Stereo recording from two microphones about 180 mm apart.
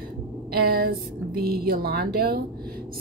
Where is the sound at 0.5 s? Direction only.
55° right (ahead or behind).